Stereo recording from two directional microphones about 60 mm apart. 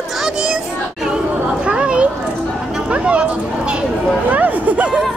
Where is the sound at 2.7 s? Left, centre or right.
Centre.